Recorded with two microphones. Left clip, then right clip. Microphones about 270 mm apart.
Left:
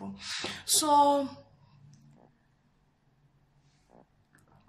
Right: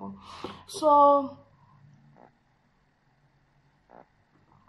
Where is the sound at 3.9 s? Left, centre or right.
Right.